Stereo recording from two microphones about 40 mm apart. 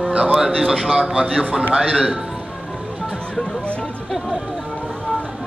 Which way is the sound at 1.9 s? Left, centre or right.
Centre.